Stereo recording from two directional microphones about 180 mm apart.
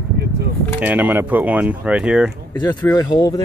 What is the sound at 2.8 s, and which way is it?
Speech, 20° left (ahead or behind).